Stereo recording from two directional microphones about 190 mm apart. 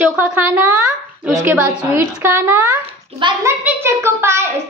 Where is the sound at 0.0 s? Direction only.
10° right (ahead or behind).